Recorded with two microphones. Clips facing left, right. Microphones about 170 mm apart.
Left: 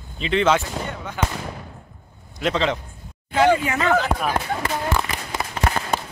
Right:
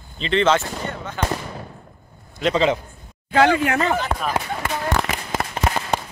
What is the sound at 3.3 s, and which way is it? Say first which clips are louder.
Speech: right 1 dB; 85° right.